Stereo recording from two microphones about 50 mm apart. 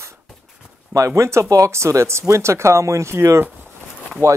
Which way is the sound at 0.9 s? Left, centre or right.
Right.